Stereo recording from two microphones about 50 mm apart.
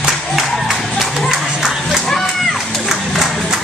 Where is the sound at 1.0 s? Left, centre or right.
Centre.